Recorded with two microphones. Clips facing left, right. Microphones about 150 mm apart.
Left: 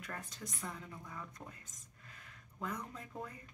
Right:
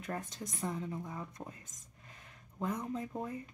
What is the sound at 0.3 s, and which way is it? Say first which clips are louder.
Speech: right 7 dB; 20° right (ahead or behind).